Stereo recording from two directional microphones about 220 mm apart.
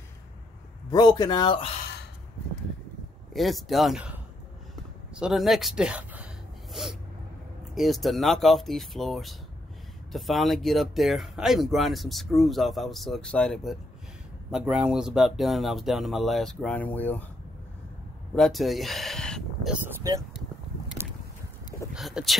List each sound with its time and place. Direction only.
0.8 s speech: 20° left (ahead or behind)
3.3 s speech: centre (ahead or behind)
18.3 s speech: centre (ahead or behind)
20.0 s speech: 15° right (ahead or behind)
21.0 s vehicle: 10° right (ahead or behind)
21.9 s speech: centre (ahead or behind)